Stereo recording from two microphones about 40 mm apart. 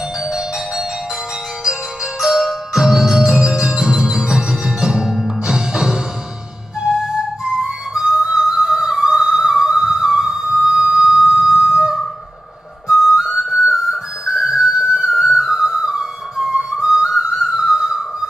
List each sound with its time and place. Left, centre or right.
0.2 s ice cream truck: centre
1.6 s music: centre
6.8 s flute: centre
14.2 s music: centre